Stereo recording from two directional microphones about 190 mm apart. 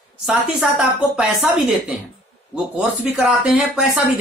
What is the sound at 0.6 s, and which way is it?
Speech, 5° right (ahead or behind).